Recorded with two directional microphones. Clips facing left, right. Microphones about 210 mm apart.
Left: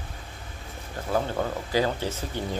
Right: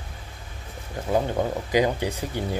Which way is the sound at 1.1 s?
15° right (ahead or behind).